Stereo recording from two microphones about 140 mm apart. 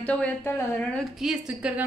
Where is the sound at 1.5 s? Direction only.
5° right (ahead or behind).